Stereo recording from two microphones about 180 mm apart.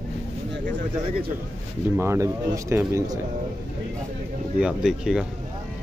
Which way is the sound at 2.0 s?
15° right (ahead or behind).